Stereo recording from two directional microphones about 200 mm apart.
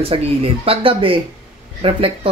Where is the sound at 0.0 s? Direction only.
30° right (ahead or behind).